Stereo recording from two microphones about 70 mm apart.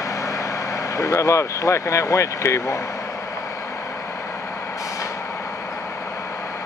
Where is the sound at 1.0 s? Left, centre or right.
Left.